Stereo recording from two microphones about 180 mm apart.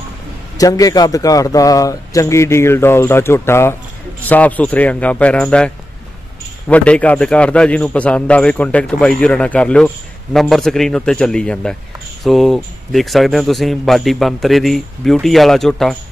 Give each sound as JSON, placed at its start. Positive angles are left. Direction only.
{"t": 0.6, "sound": "a man's voice", "side_deg": 20}
{"t": 6.7, "sound": "a man's voice", "side_deg": 5}